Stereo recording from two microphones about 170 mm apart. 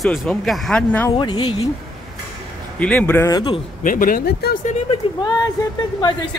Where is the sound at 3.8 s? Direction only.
55° left (ahead or behind).